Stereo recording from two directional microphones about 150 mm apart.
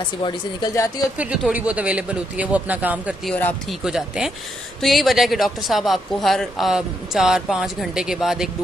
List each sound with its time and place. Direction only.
0.2 s speech: 25° left (ahead or behind)
1.1 s speech: 5° right (ahead or behind)